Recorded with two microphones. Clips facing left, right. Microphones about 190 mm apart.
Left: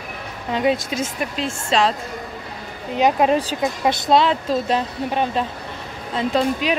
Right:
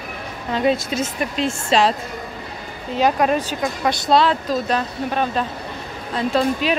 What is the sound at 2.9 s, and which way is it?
Speech, 20° left (ahead or behind).